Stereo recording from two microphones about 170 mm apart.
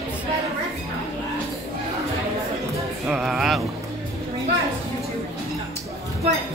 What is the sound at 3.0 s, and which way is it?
Speech, 5° right (ahead or behind).